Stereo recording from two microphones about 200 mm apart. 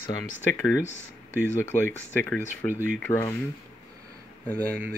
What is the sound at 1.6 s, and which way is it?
Speech, 10° left (ahead or behind).